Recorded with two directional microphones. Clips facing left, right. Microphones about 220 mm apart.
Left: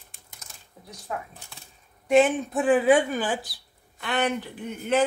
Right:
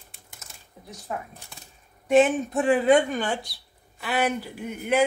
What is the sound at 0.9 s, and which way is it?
A woman's voice, 5° right (ahead or behind).